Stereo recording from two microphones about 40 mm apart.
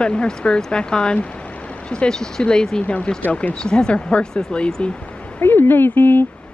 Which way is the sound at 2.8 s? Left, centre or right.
Left.